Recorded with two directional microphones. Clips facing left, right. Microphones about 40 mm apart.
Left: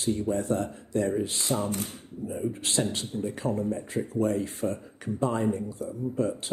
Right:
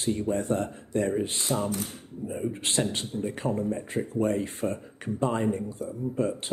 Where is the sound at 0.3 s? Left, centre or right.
Right.